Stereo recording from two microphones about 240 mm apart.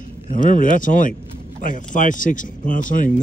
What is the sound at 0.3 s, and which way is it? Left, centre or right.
Speech, left.